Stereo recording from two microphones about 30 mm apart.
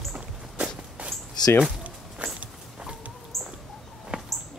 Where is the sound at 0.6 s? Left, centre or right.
Right.